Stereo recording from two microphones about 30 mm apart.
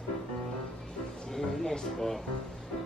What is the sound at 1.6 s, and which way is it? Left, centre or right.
Speech, centre.